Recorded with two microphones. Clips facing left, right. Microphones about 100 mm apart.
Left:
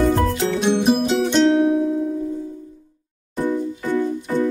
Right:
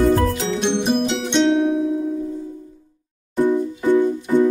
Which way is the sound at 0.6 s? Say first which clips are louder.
Left 2 dB; 5° left (ahead or behind).